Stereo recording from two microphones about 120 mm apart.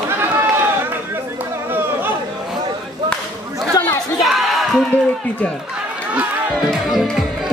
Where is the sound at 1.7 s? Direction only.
15° right (ahead or behind).